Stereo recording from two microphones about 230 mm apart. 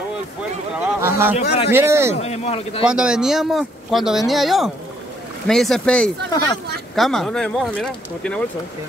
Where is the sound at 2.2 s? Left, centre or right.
Left.